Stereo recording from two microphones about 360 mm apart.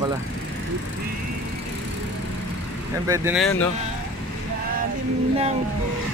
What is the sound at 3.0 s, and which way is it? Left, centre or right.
Speech, centre.